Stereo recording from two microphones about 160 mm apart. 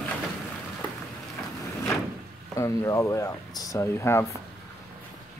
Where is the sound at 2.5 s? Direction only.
20° left (ahead or behind).